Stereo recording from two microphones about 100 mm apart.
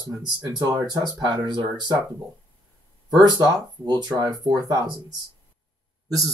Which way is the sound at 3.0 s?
45° right (ahead or behind).